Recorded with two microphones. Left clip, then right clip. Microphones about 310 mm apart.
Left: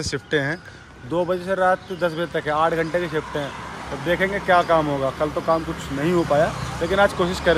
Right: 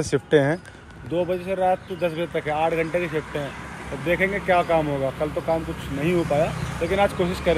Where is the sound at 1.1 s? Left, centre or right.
Centre.